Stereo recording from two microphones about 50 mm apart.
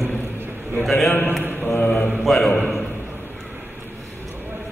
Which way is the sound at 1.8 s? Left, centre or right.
Centre.